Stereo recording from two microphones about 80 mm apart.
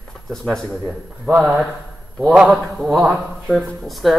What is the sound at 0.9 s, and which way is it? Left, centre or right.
Speech, right.